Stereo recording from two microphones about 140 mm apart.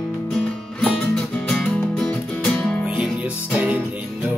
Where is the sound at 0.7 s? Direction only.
5° left (ahead or behind).